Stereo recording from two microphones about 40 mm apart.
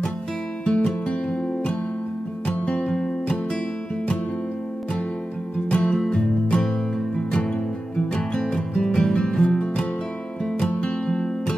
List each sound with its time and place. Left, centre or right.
0.7 s music: left
5.7 s music: left
10.7 s music: left
11.1 s music: left